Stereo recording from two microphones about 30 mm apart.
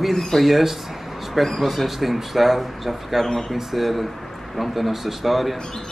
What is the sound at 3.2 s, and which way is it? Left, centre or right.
Speech, centre.